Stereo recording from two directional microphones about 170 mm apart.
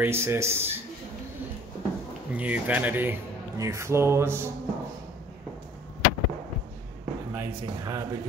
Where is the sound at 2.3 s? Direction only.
10° right (ahead or behind).